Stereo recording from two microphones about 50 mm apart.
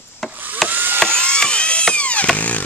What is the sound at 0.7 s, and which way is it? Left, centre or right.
Mechanisms, right.